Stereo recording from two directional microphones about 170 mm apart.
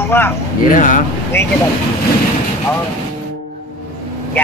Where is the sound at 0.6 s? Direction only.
50° left (ahead or behind).